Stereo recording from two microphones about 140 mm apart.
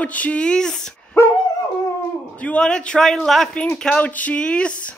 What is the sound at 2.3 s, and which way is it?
A man's voice, 10° left (ahead or behind).